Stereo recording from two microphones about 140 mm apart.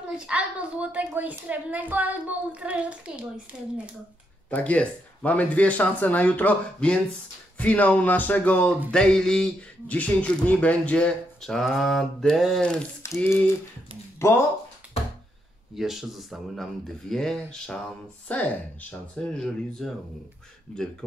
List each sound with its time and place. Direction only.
0.2 s a woman's voice: 10° right (ahead or behind)
4.5 s speech: 10° left (ahead or behind)
13.0 s a sound: 20° left (ahead or behind)
15.7 s speech: centre (ahead or behind)